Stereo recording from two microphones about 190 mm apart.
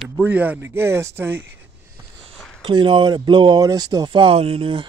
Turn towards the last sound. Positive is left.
turn(degrees=-30)  # may be behind; listen again after turning